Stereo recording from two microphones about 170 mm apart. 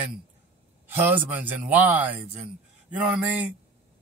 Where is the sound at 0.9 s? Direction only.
10° right (ahead or behind).